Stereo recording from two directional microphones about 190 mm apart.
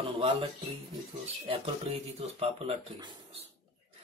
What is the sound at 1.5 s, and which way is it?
Speech, 30° right (ahead or behind).